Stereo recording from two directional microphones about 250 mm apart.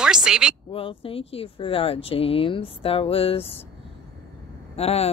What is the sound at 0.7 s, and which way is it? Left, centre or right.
Speech, left.